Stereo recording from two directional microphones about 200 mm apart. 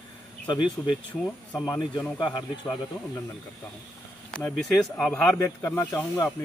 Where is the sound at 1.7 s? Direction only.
20° left (ahead or behind).